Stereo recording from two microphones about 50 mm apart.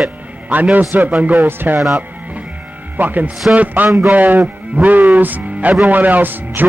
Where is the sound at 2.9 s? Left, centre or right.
Right.